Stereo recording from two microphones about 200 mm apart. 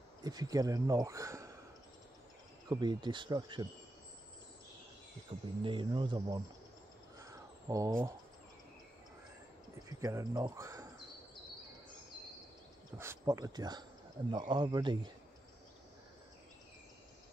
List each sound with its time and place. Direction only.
0.2 s speech: 20° right (ahead or behind)
2.7 s speech: 20° right (ahead or behind)
5.6 s speech: 25° right (ahead or behind)
7.2 s bird: 15° right (ahead or behind)
9.8 s speech: 15° right (ahead or behind)
12.9 s speech: 10° right (ahead or behind)